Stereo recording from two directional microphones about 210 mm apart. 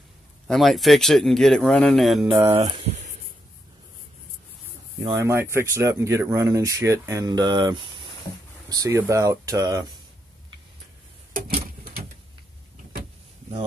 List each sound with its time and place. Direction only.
0.5 s speech: centre (ahead or behind)
2.5 s speech: 25° right (ahead or behind)
5.1 s speech: 15° right (ahead or behind)
11.3 s a sound: 45° right (ahead or behind)